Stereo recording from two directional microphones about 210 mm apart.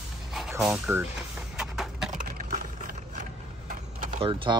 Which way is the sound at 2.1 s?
40° right (ahead or behind).